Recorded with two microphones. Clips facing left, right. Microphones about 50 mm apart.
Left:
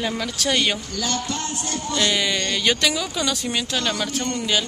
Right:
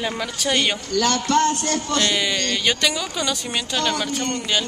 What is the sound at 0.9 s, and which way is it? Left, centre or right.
Music, right.